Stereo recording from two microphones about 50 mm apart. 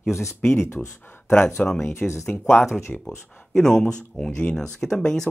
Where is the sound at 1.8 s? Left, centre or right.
Left.